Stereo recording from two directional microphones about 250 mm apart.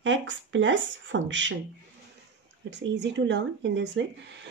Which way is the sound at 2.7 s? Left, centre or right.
Right.